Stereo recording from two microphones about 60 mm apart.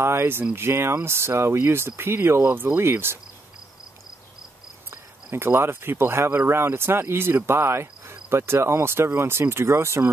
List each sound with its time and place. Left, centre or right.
0.0 s speech: right
5.3 s speech: right